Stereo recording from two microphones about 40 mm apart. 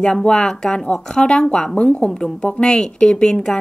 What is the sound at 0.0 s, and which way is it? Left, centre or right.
A woman's voice, left.